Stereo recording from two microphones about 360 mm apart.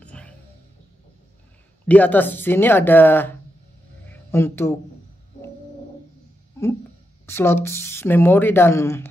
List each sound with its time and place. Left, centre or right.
0.0 s music: centre
1.9 s speech: centre
7.2 s speech: centre